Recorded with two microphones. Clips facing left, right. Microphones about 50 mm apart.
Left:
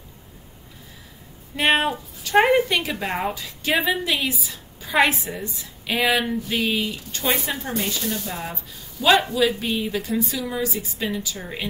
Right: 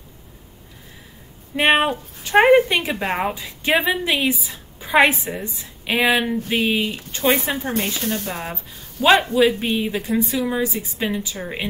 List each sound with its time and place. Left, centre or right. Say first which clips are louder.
1.6 s a woman's voice: right 3 dB; right
8.0 s speech: right 3 dB; right
9.0 s a woman's voice: right 3 dB; right